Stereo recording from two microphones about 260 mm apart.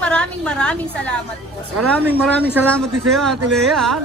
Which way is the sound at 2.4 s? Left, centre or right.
Centre.